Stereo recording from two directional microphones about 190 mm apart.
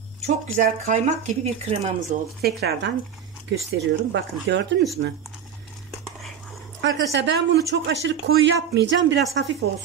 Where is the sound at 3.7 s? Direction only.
70° right (ahead or behind).